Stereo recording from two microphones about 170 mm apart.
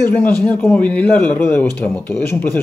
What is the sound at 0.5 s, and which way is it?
A man's voice, 5° left (ahead or behind).